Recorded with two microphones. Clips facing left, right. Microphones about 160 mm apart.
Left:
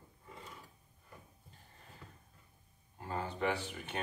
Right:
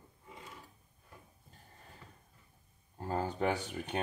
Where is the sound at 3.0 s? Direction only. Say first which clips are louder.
Right 3 dB; 40° right (ahead or behind).